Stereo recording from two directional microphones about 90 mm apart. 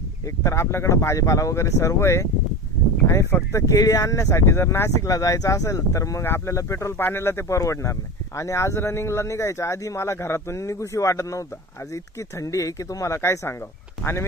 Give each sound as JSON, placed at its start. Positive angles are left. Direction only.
{"t": 0.4, "sound": "speech", "side_deg": 35}